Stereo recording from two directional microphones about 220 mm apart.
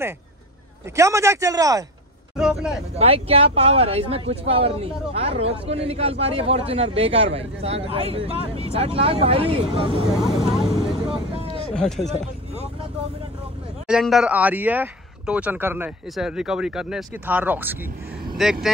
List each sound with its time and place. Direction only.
0.9 s speech: 15° right (ahead or behind)
2.3 s speech: 5° right (ahead or behind)
3.0 s speech: 25° right (ahead or behind)
10.1 s speech: centre (ahead or behind)
11.4 s a sound: 25° left (ahead or behind)
11.7 s speech: centre (ahead or behind)
13.8 s speech: centre (ahead or behind)